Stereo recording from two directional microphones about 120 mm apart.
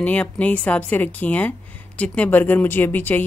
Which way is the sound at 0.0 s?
10° left (ahead or behind).